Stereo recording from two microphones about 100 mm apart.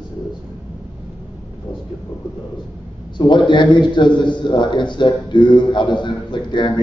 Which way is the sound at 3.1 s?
50° left (ahead or behind).